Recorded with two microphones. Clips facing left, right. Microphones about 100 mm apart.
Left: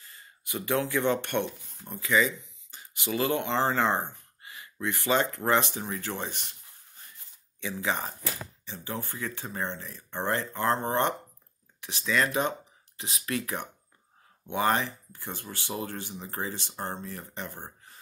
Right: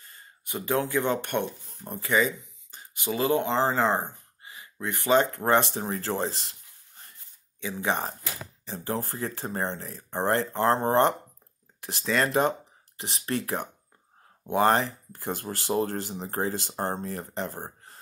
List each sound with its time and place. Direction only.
0.5 s speech: 30° right (ahead or behind)
1.3 s speech: 15° right (ahead or behind)
1.9 s speech: 35° right (ahead or behind)
3.5 s speech: 5° right (ahead or behind)
4.8 s speech: 35° right (ahead or behind)
7.8 s speech: 45° right (ahead or behind)
14.4 s speech: 40° right (ahead or behind)